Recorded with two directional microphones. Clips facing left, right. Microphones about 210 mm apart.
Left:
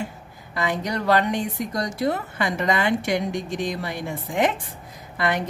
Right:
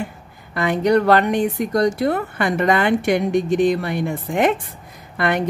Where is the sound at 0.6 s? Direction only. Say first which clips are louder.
Right 9 dB; 60° right (ahead or behind).